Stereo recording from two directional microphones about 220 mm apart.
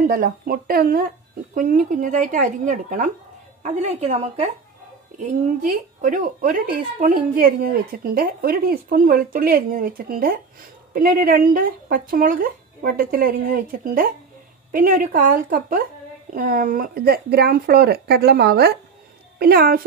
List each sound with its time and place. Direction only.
0.0 s a woman's voice: 40° right (ahead or behind)
5.9 s a woman's voice: 35° right (ahead or behind)